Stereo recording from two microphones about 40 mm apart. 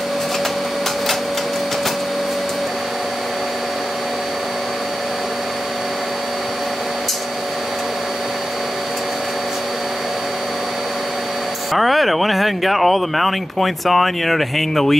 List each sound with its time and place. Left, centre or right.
11.7 s speech: centre